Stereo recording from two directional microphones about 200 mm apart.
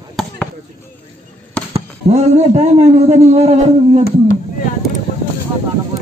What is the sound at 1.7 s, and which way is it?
A man's voice, 35° right (ahead or behind).